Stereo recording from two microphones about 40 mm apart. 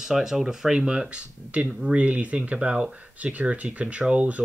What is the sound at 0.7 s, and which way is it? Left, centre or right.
Speech, right.